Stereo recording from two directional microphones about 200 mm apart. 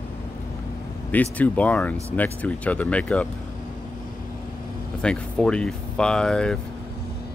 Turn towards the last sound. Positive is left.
turn(degrees=5)  # may be behind; listen again after turning